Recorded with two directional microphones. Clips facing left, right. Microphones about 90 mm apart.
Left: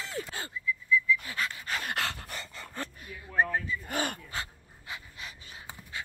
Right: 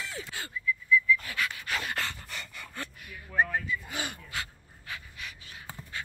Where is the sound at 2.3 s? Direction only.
30° left (ahead or behind).